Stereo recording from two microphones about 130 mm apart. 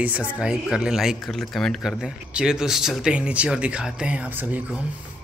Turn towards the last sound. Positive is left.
turn(degrees=-10)  # may be behind; listen again after turning